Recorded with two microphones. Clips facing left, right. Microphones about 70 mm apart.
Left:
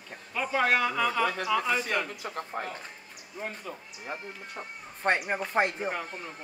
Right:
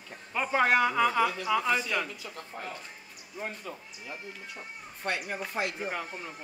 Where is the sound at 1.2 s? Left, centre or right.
Left.